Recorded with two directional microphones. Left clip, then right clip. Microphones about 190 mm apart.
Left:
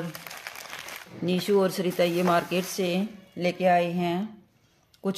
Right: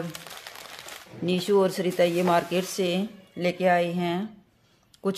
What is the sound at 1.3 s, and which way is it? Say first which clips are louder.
Speech: right 1 dB; centre (ahead or behind).